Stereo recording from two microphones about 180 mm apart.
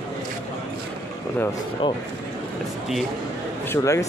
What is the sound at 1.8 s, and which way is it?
Speech, 25° left (ahead or behind).